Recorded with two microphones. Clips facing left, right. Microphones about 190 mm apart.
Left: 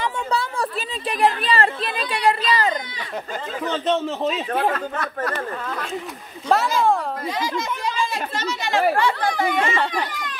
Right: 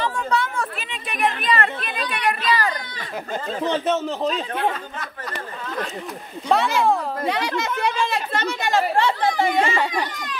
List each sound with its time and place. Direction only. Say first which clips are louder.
0.3 s a sound: even; 35° left (ahead or behind)
3.8 s a man's voice: left 1 dB; centre (ahead or behind)
4.7 s speech: left 7 dB; 65° left (ahead or behind)
6.5 s a man's voice: even; centre (ahead or behind)
7.2 s speech: right 4 dB; 65° right (ahead or behind); by 8.8 s 50° right (ahead or behind)
8.9 s speech: right 1 dB; 25° right (ahead or behind)
9.8 s speech: even; 10° right (ahead or behind)